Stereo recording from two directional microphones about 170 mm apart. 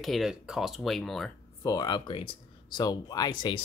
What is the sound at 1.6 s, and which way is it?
Speech, 20° left (ahead or behind).